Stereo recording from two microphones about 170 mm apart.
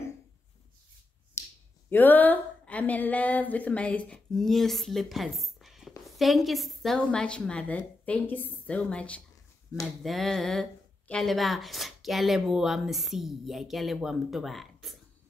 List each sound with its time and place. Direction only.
1.4 s finger snapping: 15° left (ahead or behind)
1.9 s a woman's voice: 10° left (ahead or behind)